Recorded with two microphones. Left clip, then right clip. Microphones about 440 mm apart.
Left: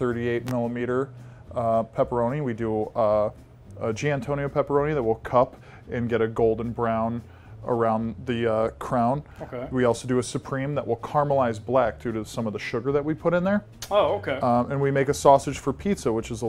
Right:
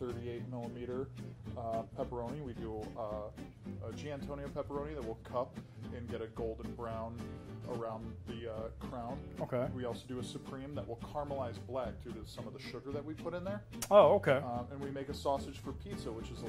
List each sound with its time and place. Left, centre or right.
0.0 s speech: left
3.8 s speech: left
7.8 s speech: left
9.4 s speech: right
9.8 s speech: left
13.7 s speech: right
14.4 s speech: left